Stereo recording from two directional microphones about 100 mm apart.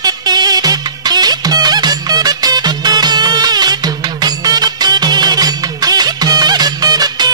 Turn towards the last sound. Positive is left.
turn(degrees=-40)  # may be behind; listen again after turning